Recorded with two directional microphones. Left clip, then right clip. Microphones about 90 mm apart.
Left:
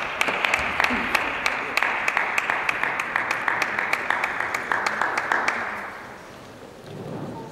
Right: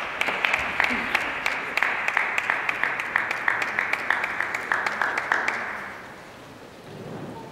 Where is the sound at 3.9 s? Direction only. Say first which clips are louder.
Left 2 dB; 60° left (ahead or behind).